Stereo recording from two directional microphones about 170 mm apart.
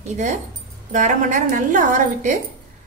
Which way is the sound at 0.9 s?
50° right (ahead or behind).